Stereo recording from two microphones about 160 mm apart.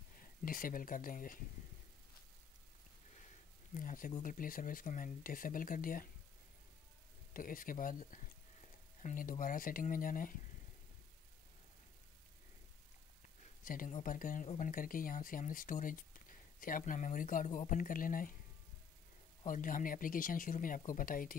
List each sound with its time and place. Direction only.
0.2 s speech: 60° left (ahead or behind)
3.7 s speech: 55° left (ahead or behind)
7.3 s speech: 60° left (ahead or behind)
13.7 s speech: 50° left (ahead or behind)
19.4 s speech: 55° left (ahead or behind)